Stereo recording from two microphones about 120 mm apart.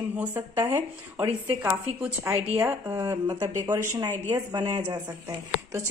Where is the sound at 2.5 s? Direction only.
25° right (ahead or behind).